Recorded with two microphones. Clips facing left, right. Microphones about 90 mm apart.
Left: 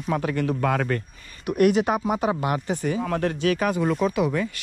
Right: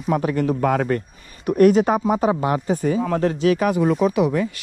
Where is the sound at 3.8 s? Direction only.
60° right (ahead or behind).